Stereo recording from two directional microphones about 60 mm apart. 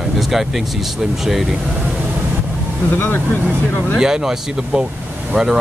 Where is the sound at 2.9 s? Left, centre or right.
Left.